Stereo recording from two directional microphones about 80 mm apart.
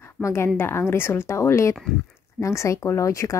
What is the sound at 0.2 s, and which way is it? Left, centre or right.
A woman's voice, left.